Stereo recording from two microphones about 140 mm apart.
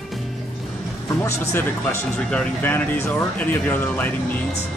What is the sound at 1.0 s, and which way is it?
Speech, 20° left (ahead or behind).